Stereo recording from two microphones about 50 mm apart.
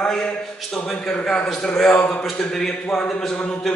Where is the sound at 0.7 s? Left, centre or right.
Left.